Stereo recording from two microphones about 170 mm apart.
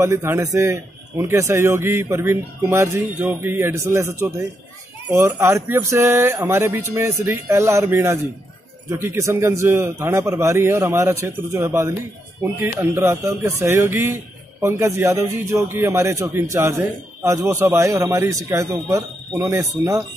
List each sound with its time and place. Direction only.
0.0 s a man's voice: 15° right (ahead or behind)